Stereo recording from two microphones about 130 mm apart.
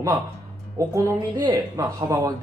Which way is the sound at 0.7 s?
25° right (ahead or behind).